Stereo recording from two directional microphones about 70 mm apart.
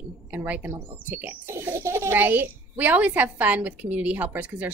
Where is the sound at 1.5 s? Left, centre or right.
Right.